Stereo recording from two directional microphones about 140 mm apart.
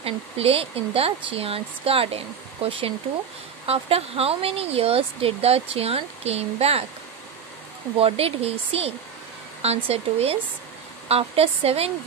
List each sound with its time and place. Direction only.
0.0 s speech: 45° right (ahead or behind)
8.0 s speech: 45° right (ahead or behind)